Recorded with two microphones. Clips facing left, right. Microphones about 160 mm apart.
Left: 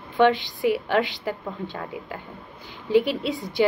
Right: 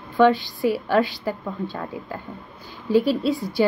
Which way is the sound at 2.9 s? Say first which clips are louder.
Right 2 dB; 20° left (ahead or behind).